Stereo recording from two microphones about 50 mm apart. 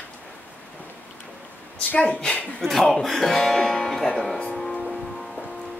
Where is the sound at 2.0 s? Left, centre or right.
Centre.